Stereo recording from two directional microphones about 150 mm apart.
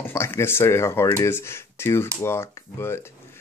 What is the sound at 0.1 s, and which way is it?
Speech, 15° left (ahead or behind).